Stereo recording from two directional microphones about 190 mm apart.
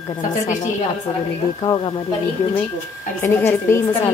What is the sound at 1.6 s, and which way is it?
Speech, 20° left (ahead or behind).